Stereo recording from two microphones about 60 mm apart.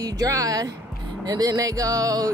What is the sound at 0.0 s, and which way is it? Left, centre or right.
Speech, right.